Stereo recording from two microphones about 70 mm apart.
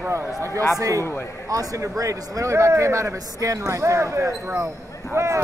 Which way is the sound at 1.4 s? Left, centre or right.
Right.